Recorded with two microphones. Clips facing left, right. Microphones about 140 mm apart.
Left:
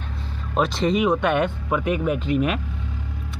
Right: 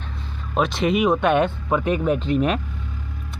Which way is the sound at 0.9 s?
20° right (ahead or behind).